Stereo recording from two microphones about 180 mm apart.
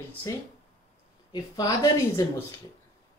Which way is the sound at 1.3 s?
20° left (ahead or behind).